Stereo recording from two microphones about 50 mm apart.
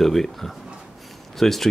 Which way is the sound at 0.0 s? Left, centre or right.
Centre.